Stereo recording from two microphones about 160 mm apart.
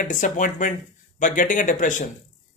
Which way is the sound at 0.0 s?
55° left (ahead or behind).